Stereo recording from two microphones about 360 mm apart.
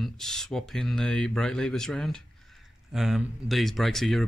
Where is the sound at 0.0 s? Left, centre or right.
Centre.